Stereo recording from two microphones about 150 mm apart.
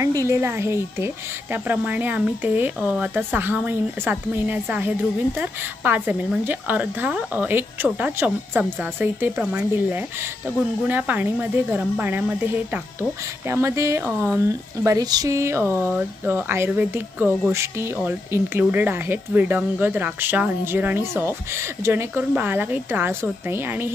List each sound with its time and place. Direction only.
0.2 s speech: 20° right (ahead or behind)